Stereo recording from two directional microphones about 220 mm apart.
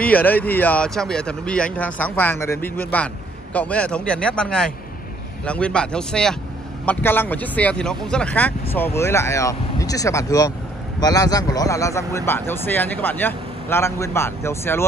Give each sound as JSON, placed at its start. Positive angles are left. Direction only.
{"t": 0.0, "sound": "a man's voice", "side_deg": 5}